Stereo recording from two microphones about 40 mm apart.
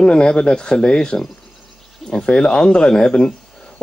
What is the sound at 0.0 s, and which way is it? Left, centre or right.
Speech, left.